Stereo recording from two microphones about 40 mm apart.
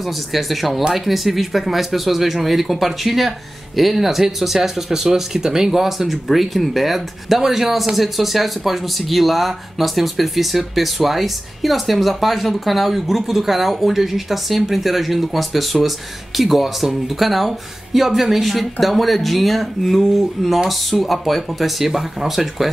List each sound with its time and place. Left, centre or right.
0.3 s speech: centre